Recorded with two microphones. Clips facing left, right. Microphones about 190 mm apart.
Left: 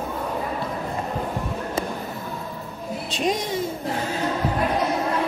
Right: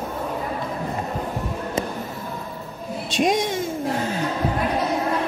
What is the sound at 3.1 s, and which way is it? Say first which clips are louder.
Speech: right 4 dB; 85° right.